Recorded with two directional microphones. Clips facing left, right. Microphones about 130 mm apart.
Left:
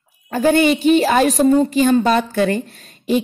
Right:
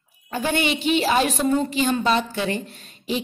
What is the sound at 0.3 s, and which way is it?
A woman's voice, 40° left (ahead or behind).